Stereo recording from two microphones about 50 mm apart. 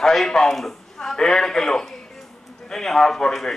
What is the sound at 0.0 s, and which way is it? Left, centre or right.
A man's voice, centre.